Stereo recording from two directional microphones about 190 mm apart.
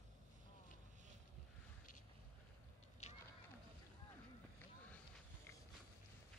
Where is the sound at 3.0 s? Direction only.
35° left (ahead or behind).